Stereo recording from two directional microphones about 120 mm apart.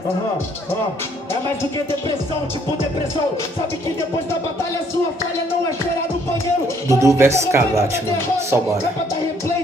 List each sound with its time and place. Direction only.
6.9 s speech: 25° right (ahead or behind)